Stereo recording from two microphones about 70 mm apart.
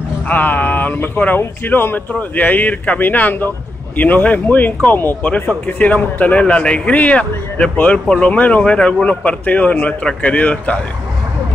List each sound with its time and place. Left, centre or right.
0.3 s speech: left